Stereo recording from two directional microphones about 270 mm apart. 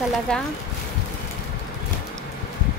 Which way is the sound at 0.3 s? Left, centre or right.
Centre.